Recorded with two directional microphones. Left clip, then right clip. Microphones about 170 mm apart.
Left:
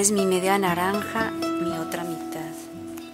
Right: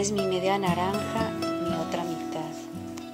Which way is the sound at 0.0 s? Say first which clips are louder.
Left 4 dB; 20° left (ahead or behind).